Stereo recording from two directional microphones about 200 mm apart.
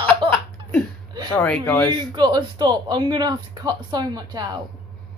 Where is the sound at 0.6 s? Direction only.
25° right (ahead or behind).